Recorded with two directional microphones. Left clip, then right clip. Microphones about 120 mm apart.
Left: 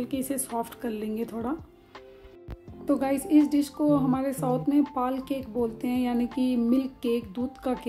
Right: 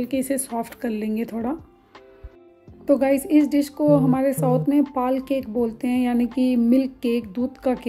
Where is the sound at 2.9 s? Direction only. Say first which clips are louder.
Right 6 dB; 30° right (ahead or behind).